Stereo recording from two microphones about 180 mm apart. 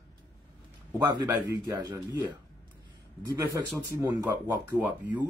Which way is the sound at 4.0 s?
15° right (ahead or behind).